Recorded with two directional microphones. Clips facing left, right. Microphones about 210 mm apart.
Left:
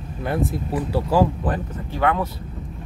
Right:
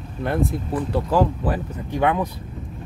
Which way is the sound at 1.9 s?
15° right (ahead or behind).